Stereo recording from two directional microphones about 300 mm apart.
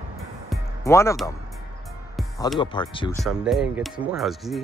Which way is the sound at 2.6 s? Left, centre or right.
Centre.